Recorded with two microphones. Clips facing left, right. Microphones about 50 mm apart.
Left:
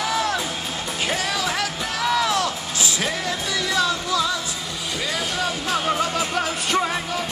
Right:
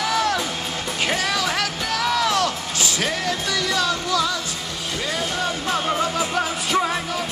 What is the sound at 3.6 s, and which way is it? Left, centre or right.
Music, centre.